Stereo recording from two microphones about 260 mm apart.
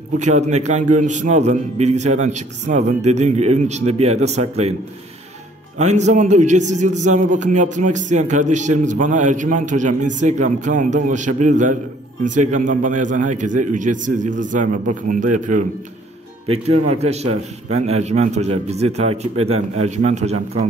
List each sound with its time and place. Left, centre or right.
0.2 s a man's voice: right
5.8 s a man's voice: right